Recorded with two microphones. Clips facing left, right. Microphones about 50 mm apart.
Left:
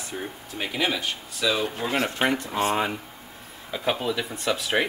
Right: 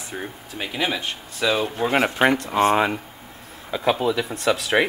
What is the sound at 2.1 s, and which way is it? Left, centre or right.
Speech, right.